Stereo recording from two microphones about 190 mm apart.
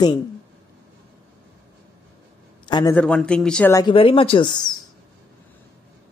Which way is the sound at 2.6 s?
25° left (ahead or behind).